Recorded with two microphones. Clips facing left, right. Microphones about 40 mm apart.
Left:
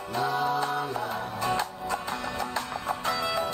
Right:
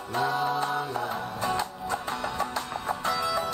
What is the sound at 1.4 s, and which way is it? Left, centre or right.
Music, left.